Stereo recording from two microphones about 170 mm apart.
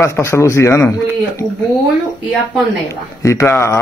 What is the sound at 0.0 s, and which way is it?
Speech, 15° left (ahead or behind).